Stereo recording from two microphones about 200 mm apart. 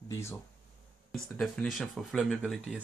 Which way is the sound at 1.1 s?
Centre (ahead or behind).